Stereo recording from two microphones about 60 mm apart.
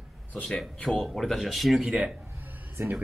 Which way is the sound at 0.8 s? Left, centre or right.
Centre.